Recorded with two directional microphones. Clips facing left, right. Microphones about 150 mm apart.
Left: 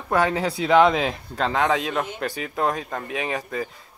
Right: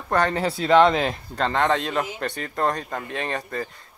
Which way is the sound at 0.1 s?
5° left (ahead or behind).